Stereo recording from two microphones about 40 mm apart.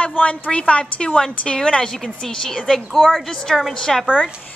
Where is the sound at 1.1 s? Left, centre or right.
Centre.